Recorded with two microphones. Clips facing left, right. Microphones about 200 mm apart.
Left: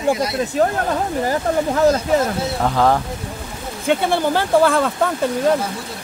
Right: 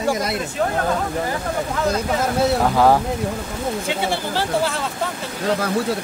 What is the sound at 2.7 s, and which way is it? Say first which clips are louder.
Speech: even; 10° right (ahead or behind).